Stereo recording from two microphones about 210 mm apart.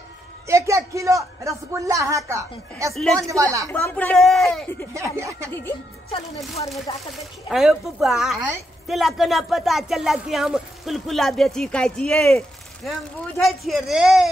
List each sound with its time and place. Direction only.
0.5 s a woman's voice: 15° right (ahead or behind)
2.9 s speech: centre (ahead or behind)
3.2 s a woman's voice: 15° right (ahead or behind)
3.6 s speech: 5° left (ahead or behind)
4.9 s a woman's voice: 15° right (ahead or behind)
5.5 s speech: 10° left (ahead or behind)
6.0 s speech: 30° left (ahead or behind)
7.1 s speech: centre (ahead or behind)
12.3 s a sound: 5° left (ahead or behind)
13.4 s speech: centre (ahead or behind)